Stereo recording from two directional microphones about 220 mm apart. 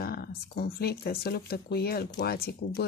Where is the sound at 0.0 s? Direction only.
45° left (ahead or behind).